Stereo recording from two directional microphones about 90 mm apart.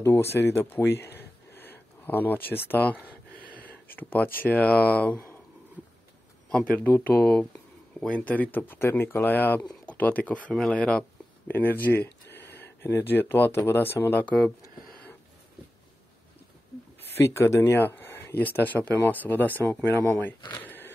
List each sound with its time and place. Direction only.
0.0 s speech: 30° left (ahead or behind)
1.5 s a sound: 25° left (ahead or behind)
3.8 s speech: 20° left (ahead or behind)
6.5 s speech: 15° left (ahead or behind)
17.2 s speech: 30° left (ahead or behind)
20.5 s a sound: 20° left (ahead or behind)